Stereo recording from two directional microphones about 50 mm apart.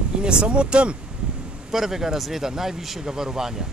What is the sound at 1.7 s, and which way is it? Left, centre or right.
Speech, centre.